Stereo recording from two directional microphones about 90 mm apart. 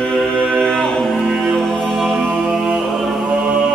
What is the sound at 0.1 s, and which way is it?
Music, 10° left (ahead or behind).